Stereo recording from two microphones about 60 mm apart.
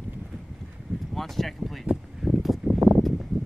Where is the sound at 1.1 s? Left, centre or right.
Centre.